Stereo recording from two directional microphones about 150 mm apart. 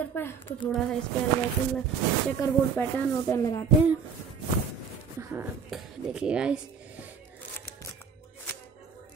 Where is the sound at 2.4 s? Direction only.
20° left (ahead or behind).